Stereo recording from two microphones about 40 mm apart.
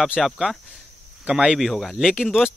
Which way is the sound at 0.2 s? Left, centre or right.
Centre.